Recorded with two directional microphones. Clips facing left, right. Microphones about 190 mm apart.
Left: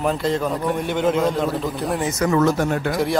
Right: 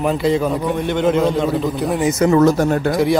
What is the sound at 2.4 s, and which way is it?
Speech, 40° right (ahead or behind).